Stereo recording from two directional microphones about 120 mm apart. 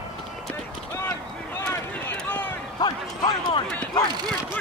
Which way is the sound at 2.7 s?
35° left (ahead or behind).